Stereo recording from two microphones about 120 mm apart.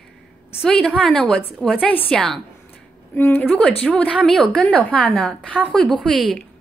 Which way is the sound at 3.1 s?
15° left (ahead or behind).